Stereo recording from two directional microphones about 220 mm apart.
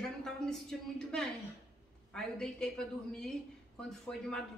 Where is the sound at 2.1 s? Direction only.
5° left (ahead or behind).